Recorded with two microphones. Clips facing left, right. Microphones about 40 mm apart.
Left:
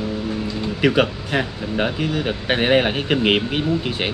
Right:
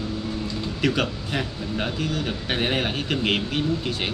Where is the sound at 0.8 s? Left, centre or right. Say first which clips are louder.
Left 6 dB; left.